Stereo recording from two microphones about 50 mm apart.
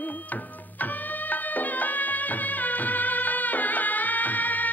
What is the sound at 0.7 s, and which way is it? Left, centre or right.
Music, left.